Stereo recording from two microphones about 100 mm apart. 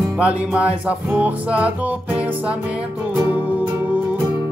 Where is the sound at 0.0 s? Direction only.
15° right (ahead or behind).